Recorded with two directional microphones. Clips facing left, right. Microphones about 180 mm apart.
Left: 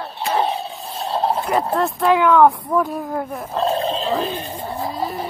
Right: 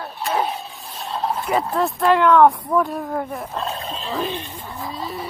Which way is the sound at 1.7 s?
Centre (ahead or behind).